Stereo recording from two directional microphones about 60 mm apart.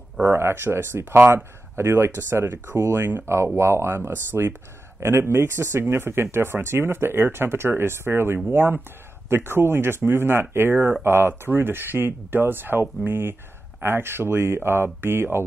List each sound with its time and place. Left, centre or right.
0.3 s speech: right
3.5 s speech: right